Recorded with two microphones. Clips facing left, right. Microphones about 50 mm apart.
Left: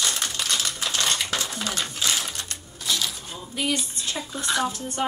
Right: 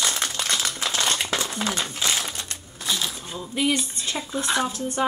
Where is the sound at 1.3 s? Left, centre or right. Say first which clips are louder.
Right 3 dB; right.